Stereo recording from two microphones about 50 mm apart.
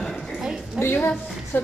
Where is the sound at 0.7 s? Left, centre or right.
Left.